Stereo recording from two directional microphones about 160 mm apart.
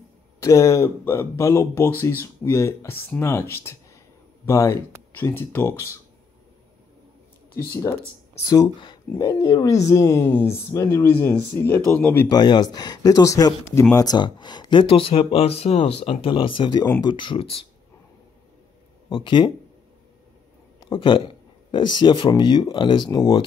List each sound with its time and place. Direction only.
0.4 s speech: 20° left (ahead or behind)
7.5 s speech: 20° left (ahead or behind)
12.3 s speech: 25° left (ahead or behind)
19.0 s speech: 30° left (ahead or behind)
20.9 s speech: 30° left (ahead or behind)